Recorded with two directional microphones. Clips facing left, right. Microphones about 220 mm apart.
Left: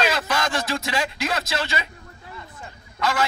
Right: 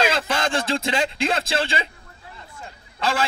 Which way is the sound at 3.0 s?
30° right (ahead or behind).